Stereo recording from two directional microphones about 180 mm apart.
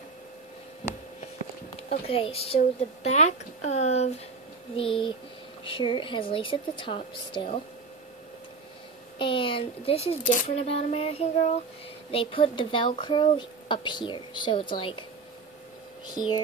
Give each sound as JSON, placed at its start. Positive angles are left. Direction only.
{"t": 1.8, "sound": "speech", "side_deg": 35}
{"t": 9.2, "sound": "speech", "side_deg": 30}